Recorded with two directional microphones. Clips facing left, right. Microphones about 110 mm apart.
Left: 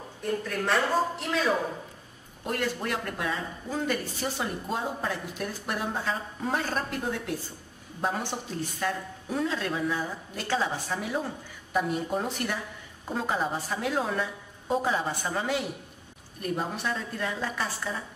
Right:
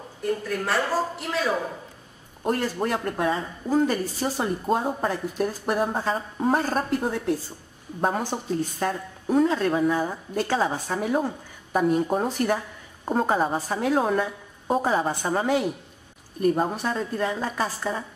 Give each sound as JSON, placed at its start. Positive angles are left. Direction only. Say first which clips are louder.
{"t": 0.2, "sound": "speech", "louder": "right 3 dB", "side_deg": 0}
{"t": 2.4, "sound": "a woman's voice", "louder": "right 5 dB", "side_deg": -35}